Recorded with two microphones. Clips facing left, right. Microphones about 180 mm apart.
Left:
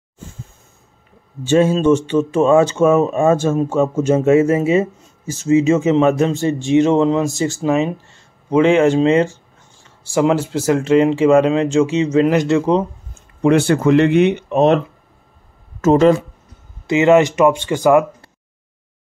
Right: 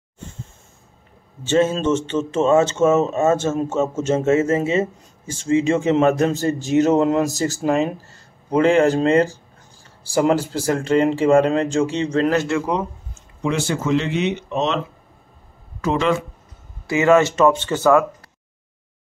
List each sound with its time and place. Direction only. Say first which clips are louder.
1.4 s speech: left 4 dB; 10° left (ahead or behind)
10.6 s speech: left 7 dB; 5° left (ahead or behind); by 12.8 s 25° left (ahead or behind)
13.1 s speech: left 10 dB; 60° left (ahead or behind)
15.8 s speech: left 8 dB; 40° left (ahead or behind)
16.8 s speech: left 3 dB; 20° left (ahead or behind)